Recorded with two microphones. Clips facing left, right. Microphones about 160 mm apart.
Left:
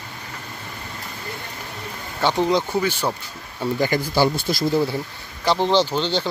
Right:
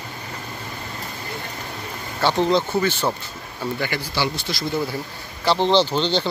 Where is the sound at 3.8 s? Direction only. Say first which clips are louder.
Left 7 dB; 45° left (ahead or behind).